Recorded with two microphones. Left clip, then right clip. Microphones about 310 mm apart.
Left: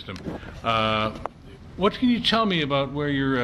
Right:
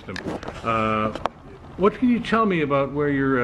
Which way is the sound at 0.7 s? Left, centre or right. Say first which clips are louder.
Even; centre.